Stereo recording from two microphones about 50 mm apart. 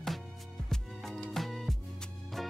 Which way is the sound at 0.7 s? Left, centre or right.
Centre.